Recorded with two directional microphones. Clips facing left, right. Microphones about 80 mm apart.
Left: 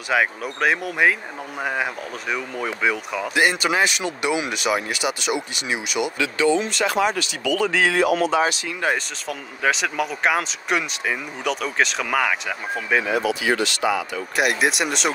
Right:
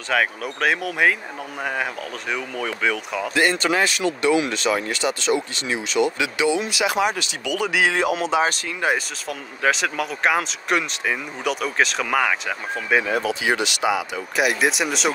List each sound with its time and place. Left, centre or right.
0.1 s speech: centre
3.3 s speech: centre
6.1 s speech: centre
8.8 s speech: centre
13.1 s speech: right
13.4 s speech: centre
14.3 s speech: centre